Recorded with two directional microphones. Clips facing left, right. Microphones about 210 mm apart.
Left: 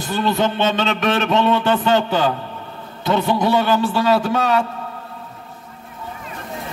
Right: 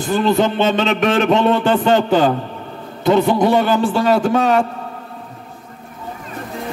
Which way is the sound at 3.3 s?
50° right (ahead or behind).